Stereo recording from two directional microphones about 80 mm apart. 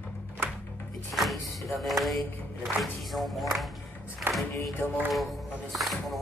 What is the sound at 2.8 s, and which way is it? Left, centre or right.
Speech, centre.